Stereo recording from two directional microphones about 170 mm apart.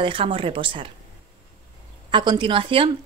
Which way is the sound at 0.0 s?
30° right (ahead or behind).